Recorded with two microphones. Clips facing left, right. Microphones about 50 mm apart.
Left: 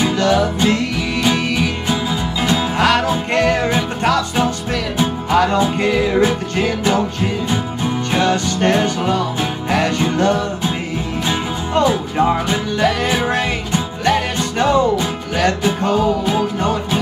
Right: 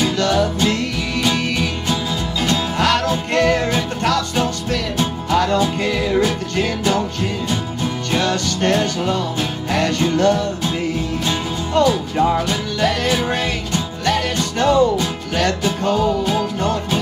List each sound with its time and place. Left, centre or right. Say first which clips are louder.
0.0 s music: left 2 dB; centre